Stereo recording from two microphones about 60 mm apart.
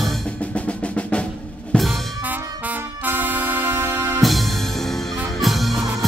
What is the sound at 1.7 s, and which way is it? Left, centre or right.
Music, centre.